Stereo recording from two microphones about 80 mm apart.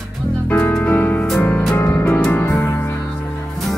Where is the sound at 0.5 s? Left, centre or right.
Left.